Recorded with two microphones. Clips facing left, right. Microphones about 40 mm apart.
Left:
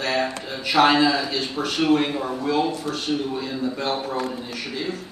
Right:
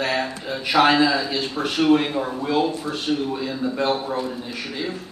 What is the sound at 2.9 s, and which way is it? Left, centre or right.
Speech, right.